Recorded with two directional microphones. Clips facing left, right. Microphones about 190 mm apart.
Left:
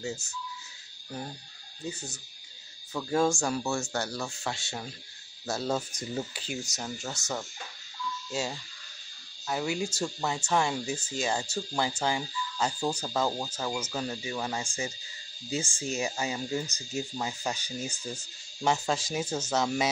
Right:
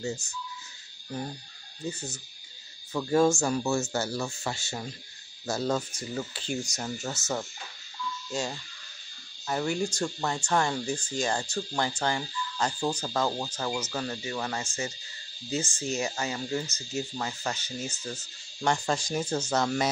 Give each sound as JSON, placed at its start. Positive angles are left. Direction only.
{"t": 0.0, "sound": "speech", "side_deg": 5}
{"t": 1.9, "sound": "speech", "side_deg": 0}
{"t": 5.9, "sound": "speech", "side_deg": 15}
{"t": 6.4, "sound": "speech", "side_deg": 5}